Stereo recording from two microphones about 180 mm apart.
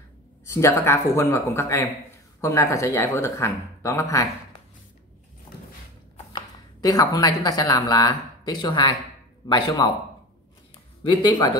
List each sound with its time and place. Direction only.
0.5 s speech: 15° left (ahead or behind)
6.3 s speech: 20° left (ahead or behind)
11.1 s speech: 25° left (ahead or behind)